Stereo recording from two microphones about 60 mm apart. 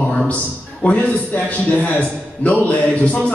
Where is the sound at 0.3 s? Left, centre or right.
Left.